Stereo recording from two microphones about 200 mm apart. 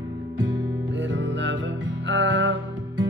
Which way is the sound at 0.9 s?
65° right (ahead or behind).